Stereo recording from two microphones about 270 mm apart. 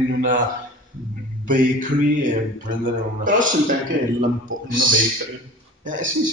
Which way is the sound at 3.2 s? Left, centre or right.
Right.